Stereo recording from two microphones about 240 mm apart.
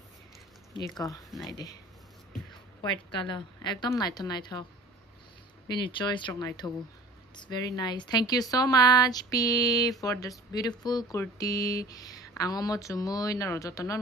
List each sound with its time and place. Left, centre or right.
0.7 s a woman's voice: centre
3.1 s a woman's voice: centre
5.7 s a woman's voice: centre